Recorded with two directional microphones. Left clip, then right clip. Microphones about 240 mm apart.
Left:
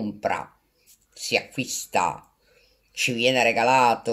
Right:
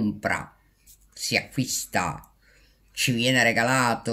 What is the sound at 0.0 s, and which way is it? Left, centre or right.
Speech, centre.